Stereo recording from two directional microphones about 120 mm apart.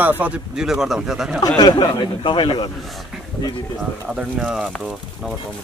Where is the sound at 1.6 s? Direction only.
35° left (ahead or behind).